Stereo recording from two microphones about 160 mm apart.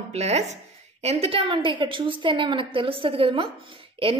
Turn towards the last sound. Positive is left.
turn(degrees=-35)  # may be behind; listen again after turning